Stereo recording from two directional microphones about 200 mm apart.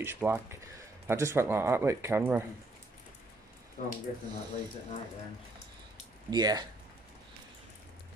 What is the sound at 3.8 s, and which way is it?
Speech, 35° left (ahead or behind).